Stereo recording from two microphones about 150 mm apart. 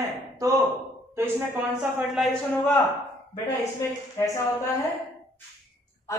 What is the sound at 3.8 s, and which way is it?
Speech, 20° left (ahead or behind).